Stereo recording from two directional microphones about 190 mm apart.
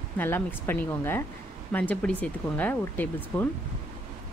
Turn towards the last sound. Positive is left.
turn(degrees=10)  # may be behind; listen again after turning